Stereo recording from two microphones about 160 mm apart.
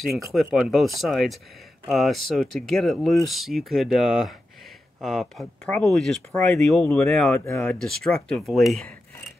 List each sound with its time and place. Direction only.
0.0 s speech: centre (ahead or behind)